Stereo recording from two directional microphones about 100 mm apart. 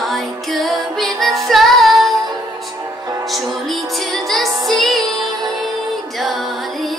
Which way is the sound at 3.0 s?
40° right (ahead or behind).